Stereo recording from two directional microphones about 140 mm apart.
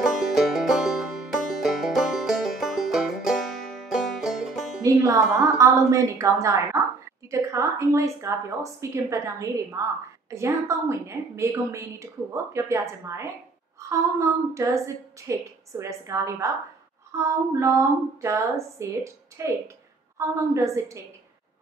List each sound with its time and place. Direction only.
0.0 s music: centre (ahead or behind)
4.8 s a woman's voice: 25° right (ahead or behind)